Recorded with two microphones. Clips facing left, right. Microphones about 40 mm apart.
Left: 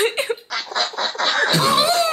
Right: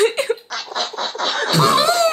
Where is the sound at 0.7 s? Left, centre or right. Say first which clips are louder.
Left 1 dB; left.